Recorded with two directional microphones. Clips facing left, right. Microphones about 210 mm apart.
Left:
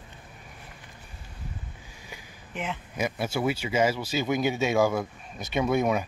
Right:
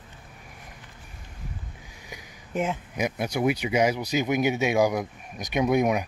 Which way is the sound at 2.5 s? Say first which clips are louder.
Right 7 dB; 45° right (ahead or behind).